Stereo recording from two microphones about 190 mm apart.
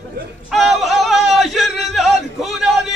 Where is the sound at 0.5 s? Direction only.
Centre (ahead or behind).